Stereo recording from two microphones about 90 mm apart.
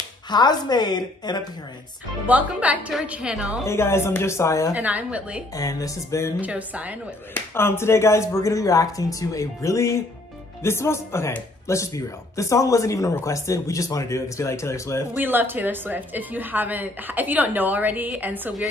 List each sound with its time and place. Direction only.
0.3 s a woman's voice: 50° left (ahead or behind)
2.2 s a woman's voice: 15° right (ahead or behind)
3.6 s speech: 30° left (ahead or behind)
4.7 s a woman's voice: 15° right (ahead or behind)
5.6 s speech: 40° left (ahead or behind)
6.4 s a woman's voice: 15° right (ahead or behind)
7.3 s speech: 25° left (ahead or behind)
15.1 s a woman's voice: 20° right (ahead or behind)